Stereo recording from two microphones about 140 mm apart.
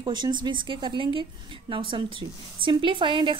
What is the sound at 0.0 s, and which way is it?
A woman's voice, 35° right (ahead or behind).